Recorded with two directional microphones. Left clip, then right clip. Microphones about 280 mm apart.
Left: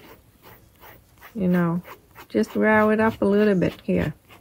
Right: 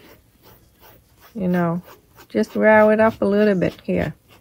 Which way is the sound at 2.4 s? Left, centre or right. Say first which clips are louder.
Right 5 dB; centre.